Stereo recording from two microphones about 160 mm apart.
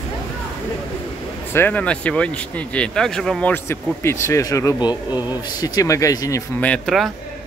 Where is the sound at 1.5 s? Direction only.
10° left (ahead or behind).